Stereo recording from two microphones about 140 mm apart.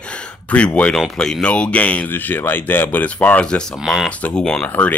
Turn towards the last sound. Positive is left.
turn(degrees=10)  # may be behind; listen again after turning